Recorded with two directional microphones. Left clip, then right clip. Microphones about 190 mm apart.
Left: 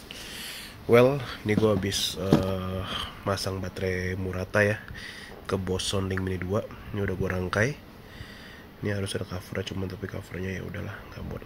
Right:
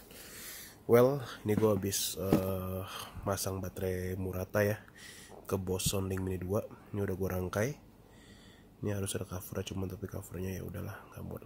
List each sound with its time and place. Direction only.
0.8 s speech: 20° right (ahead or behind)
8.8 s speech: 30° right (ahead or behind)